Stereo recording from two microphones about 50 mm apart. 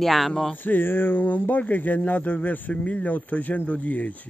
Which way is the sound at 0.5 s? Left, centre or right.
Left.